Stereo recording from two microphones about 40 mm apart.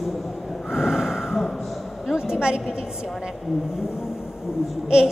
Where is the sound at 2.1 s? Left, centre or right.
Centre.